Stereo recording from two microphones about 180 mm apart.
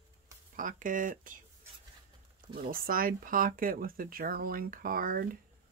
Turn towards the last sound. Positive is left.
turn(degrees=-55)  # may be behind; listen again after turning